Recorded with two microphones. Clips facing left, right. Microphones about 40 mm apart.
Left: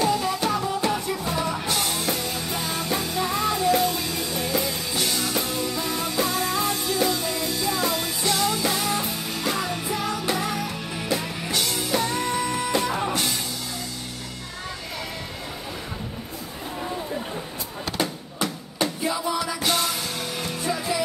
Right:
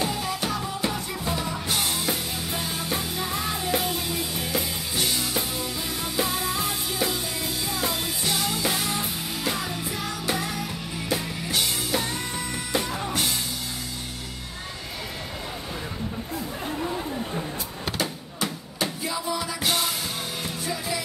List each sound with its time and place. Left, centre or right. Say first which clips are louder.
0.2 s music: left 4 dB; centre
3.5 s music: left 6 dB; centre
6.1 s music: left 1 dB; centre
7.7 s music: left 3 dB; centre
10.5 s music: left 3 dB; centre
11.5 s music: left 2 dB; centre
12.1 s music: left 6 dB; centre
17.9 s a sound: left 5 dB; centre
19.0 s music: left 4 dB; centre
19.4 s music: left 2 dB; centre
20.7 s music: left 3 dB; centre